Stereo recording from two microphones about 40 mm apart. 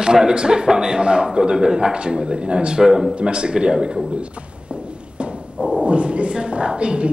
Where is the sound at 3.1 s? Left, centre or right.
Right.